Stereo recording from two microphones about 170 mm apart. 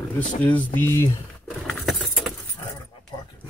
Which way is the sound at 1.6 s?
Centre (ahead or behind).